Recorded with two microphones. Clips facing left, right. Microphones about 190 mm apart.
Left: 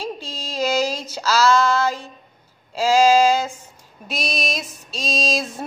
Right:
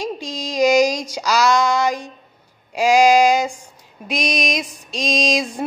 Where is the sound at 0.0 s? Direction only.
15° right (ahead or behind).